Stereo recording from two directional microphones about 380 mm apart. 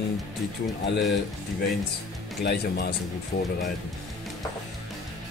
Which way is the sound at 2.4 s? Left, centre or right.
Left.